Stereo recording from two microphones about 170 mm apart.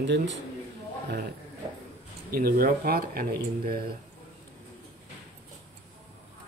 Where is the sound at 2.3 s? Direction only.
60° right (ahead or behind).